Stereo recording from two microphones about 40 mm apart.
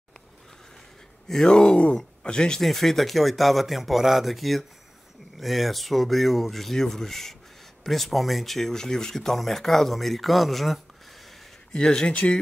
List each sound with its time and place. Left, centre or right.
1.3 s speech: centre
2.6 s speech: centre
11.7 s speech: centre
12.1 s speech: left